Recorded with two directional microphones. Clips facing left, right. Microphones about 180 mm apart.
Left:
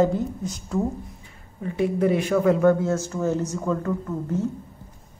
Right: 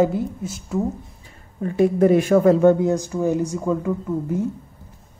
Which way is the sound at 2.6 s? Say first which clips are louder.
Right 4 dB; 20° right (ahead or behind).